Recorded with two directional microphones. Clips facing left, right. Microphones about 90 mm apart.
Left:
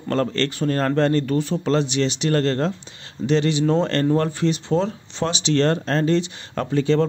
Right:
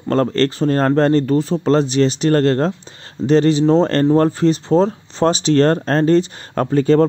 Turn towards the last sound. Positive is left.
turn(degrees=-45)  # may be behind; listen again after turning